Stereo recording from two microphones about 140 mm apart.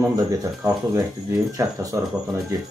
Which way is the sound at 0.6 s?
20° right (ahead or behind).